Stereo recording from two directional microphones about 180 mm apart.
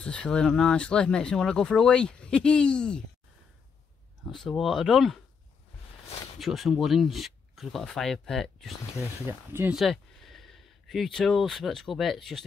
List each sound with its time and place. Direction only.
0.0 s speech: 5° left (ahead or behind)
4.3 s speech: centre (ahead or behind)
6.0 s a sound: 35° left (ahead or behind)
6.4 s speech: centre (ahead or behind)
9.5 s speech: 10° right (ahead or behind)
9.8 s speech: centre (ahead or behind)